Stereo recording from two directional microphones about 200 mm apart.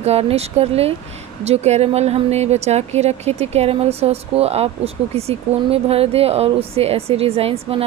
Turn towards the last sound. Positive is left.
turn(degrees=-30)  # may be behind; listen again after turning